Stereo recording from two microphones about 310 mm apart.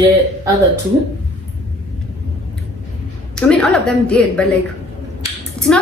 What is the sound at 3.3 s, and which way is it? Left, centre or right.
A woman's voice, centre.